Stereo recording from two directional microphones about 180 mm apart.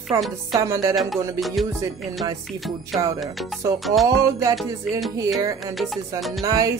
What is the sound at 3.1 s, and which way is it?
Music, centre (ahead or behind).